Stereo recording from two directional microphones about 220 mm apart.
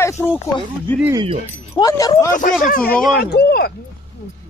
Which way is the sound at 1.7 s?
15° left (ahead or behind).